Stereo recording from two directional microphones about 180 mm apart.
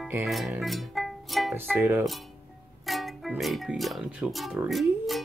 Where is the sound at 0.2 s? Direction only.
Centre (ahead or behind).